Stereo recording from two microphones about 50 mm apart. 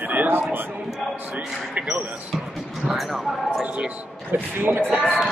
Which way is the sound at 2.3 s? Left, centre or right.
Centre.